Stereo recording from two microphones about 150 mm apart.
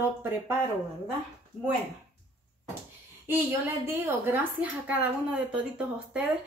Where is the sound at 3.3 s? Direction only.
15° right (ahead or behind).